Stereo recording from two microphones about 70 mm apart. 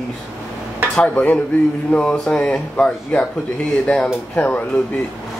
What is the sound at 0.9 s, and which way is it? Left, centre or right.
Speech, centre.